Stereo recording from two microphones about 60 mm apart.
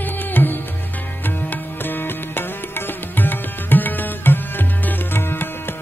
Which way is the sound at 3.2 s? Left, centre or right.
Left.